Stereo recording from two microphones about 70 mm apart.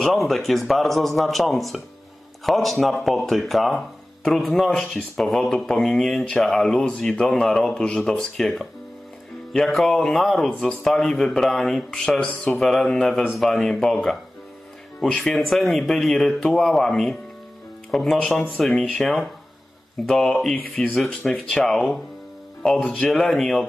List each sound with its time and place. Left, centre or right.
0.0 s speech: centre
18.3 s speech: left
18.6 s speech: centre